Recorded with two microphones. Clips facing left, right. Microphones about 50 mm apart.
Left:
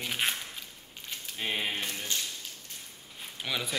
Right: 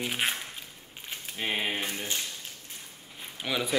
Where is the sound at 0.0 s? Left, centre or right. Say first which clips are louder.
Right 2 dB; centre.